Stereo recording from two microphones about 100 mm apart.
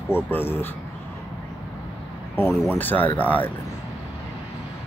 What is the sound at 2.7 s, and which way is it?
Speech, 20° left (ahead or behind).